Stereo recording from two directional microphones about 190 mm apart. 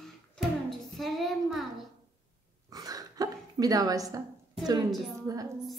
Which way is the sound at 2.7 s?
20° right (ahead or behind).